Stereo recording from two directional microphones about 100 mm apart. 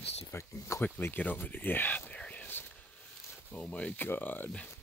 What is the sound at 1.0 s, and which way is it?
Whispering, 20° left (ahead or behind).